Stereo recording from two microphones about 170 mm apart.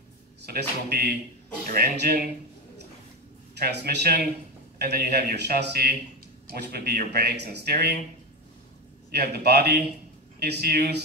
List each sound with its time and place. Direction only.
0.5 s speech: 65° right (ahead or behind)
3.5 s speech: 70° right (ahead or behind)
9.1 s speech: 70° right (ahead or behind)